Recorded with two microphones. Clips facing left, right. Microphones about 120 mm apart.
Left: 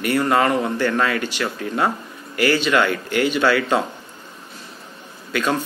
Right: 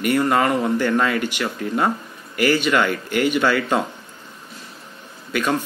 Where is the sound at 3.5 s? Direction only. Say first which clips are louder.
Left 1 dB; centre (ahead or behind).